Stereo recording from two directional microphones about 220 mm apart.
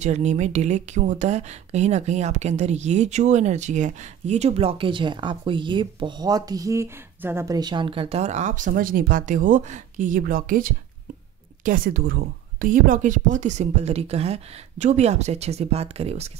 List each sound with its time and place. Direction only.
0.0 s speech: 30° right (ahead or behind)